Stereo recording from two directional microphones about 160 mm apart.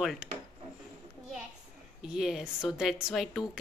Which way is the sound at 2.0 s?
5° right (ahead or behind).